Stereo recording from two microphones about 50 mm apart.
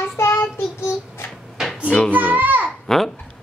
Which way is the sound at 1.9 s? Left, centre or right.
Left.